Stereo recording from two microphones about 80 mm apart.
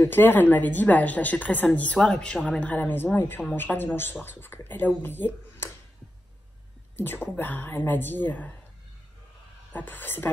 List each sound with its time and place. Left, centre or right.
0.0 s speech: left; by 2.6 s centre
2.6 s speech: left
7.3 s speech: left
9.7 s speech: left